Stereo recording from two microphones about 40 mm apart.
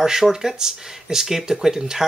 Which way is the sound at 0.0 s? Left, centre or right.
Centre.